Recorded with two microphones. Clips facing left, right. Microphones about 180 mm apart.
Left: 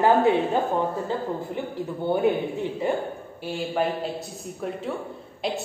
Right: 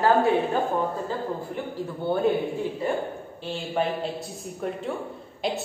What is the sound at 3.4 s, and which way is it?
A man's voice, 10° left (ahead or behind).